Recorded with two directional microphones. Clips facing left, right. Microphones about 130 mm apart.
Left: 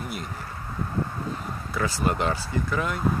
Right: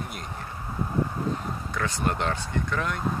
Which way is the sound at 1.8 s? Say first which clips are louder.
Left 3 dB; 5° left (ahead or behind).